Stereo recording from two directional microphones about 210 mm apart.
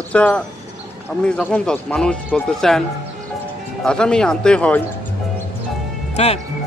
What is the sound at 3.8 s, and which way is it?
Speech, 5° left (ahead or behind).